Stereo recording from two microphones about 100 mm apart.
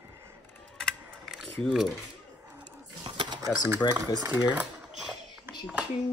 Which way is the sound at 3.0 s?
50° right (ahead or behind).